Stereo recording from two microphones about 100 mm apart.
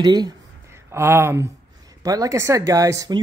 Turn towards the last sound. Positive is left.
turn(degrees=-35)  # may be behind; listen again after turning